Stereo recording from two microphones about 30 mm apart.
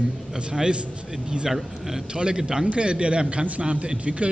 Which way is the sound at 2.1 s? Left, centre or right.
Right.